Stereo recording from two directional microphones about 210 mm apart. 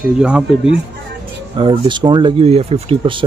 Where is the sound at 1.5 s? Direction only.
20° right (ahead or behind).